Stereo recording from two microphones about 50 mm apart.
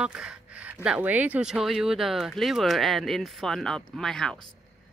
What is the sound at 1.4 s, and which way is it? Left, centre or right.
Speech, centre.